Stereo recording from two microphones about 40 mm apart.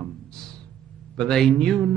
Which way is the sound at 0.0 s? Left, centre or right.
Centre.